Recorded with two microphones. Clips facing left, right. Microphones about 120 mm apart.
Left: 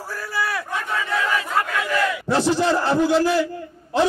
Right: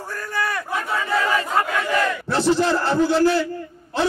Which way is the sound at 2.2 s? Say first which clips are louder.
Left 1 dB; 15° left (ahead or behind).